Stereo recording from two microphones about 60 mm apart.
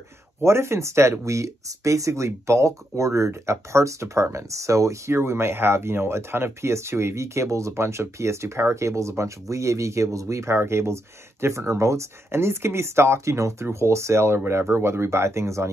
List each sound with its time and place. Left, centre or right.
0.4 s speech: right